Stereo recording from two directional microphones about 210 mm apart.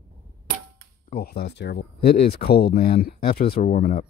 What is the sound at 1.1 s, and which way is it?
Speech, 45° left (ahead or behind).